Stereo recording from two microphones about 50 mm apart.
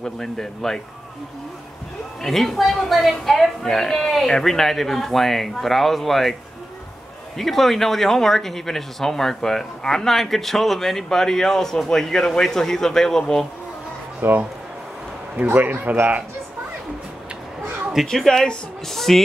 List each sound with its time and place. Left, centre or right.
0.0 s speech: centre
2.2 s speech: centre
7.3 s speech: centre
14.2 s a man's voice: right
18.0 s speech: centre